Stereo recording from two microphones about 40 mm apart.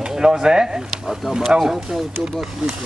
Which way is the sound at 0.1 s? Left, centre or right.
Centre.